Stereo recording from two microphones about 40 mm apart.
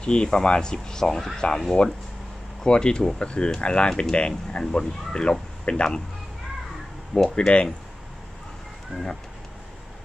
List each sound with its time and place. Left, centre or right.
0.0 s speech: left
2.6 s speech: left
7.3 s speech: left
8.9 s speech: right